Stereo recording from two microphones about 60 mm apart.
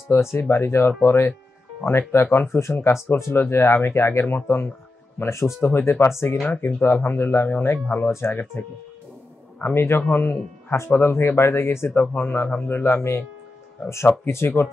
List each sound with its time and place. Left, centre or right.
0.1 s speech: left
5.6 s speech: left
6.0 s speech: left
6.4 s speech: left
8.3 s speech: left
11.9 s speech: left